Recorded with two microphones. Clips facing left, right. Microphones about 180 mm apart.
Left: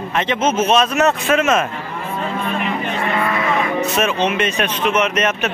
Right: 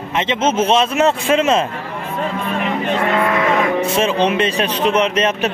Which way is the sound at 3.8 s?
30° right (ahead or behind).